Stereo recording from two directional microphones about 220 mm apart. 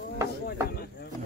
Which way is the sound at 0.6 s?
45° left (ahead or behind).